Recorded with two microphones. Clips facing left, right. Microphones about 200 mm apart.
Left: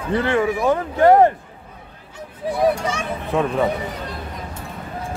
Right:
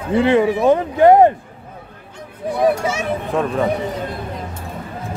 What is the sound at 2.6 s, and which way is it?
Speech, 5° right (ahead or behind).